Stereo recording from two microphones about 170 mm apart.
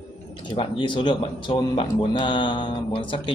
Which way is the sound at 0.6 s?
30° left (ahead or behind).